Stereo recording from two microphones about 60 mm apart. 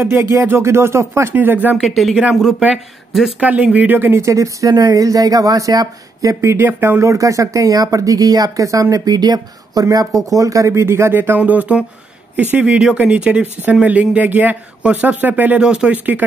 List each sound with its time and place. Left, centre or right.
0.0 s speech: right
1.3 s speech: right
1.8 s speech: centre
3.3 s speech: right
4.1 s speech: right
6.6 s speech: right
7.0 s speech: right
8.9 s speech: right
11.1 s speech: right
15.6 s speech: centre
15.9 s speech: right